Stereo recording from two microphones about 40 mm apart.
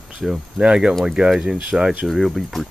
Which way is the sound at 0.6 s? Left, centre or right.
Right.